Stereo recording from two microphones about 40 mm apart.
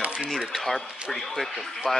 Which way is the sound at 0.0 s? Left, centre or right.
Right.